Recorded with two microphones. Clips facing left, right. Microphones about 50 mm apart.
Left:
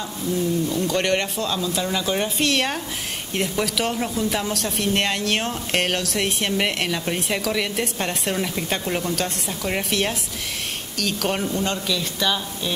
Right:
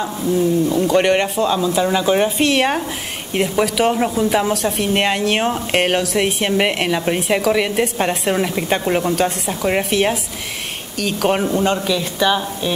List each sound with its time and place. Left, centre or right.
0.0 s a woman's voice: centre